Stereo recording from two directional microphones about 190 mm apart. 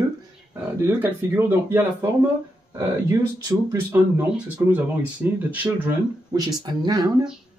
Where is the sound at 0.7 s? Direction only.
10° right (ahead or behind).